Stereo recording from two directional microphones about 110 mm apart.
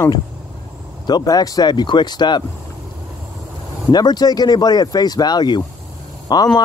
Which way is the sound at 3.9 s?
40° left (ahead or behind).